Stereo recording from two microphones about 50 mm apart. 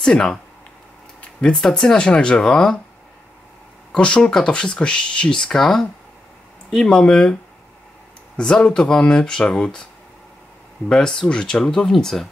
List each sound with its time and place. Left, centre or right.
0.0 s speech: centre
1.5 s speech: centre
2.0 s speech: centre
3.9 s speech: centre
8.4 s speech: centre
10.9 s speech: centre